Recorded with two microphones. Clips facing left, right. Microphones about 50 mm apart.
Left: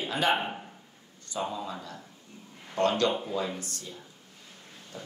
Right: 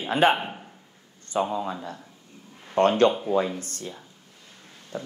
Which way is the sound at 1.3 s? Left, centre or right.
Right.